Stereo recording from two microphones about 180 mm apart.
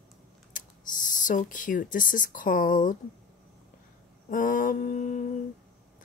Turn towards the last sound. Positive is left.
turn(degrees=45)  # may be behind; listen again after turning